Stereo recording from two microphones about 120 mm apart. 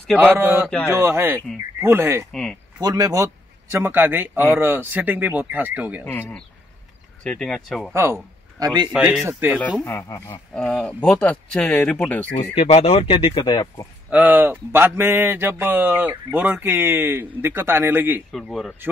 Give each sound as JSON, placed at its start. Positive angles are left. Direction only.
{"t": 0.1, "sound": "a man's voice", "side_deg": -15}
{"t": 6.0, "sound": "speech", "side_deg": 15}
{"t": 7.9, "sound": "speech", "side_deg": -25}
{"t": 8.9, "sound": "a man's voice", "side_deg": -5}
{"t": 9.2, "sound": "speech", "side_deg": -20}
{"t": 9.8, "sound": "speech", "side_deg": 25}
{"t": 10.5, "sound": "speech", "side_deg": 5}
{"t": 12.5, "sound": "speech", "side_deg": 65}
{"t": 14.1, "sound": "a man's voice", "side_deg": -15}
{"t": 18.3, "sound": "speech", "side_deg": 5}